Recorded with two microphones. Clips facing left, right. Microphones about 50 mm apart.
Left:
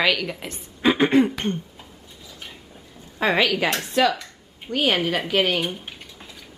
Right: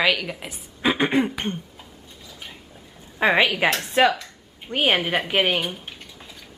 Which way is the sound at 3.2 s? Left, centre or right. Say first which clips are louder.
Right 1 dB; centre.